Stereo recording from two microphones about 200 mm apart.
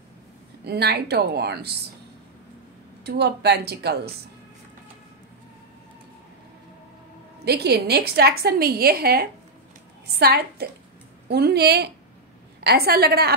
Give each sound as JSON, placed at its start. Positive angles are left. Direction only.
{"t": 0.7, "sound": "a woman's voice", "side_deg": -55}
{"t": 3.0, "sound": "speech", "side_deg": -55}
{"t": 7.4, "sound": "a woman's voice", "side_deg": -55}